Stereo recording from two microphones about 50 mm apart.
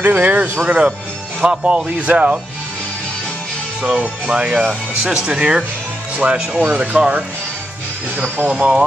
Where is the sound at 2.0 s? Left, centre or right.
Right.